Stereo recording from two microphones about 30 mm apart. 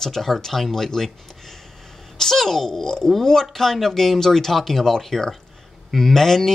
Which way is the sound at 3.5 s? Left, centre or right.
Centre.